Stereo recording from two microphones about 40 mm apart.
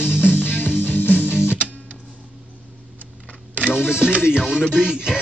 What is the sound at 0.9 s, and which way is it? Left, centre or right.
Music, left.